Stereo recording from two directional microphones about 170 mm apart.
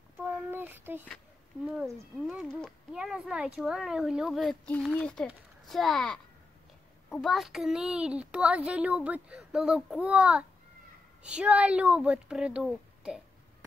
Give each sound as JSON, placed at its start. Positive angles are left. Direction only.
{"t": 0.2, "sound": "child singing", "side_deg": -10}
{"t": 1.8, "sound": "speech", "side_deg": 0}